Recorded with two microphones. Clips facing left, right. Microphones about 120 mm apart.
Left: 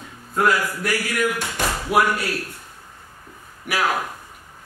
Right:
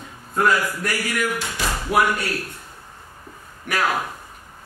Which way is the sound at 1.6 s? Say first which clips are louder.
Left 3 dB; 50° left (ahead or behind).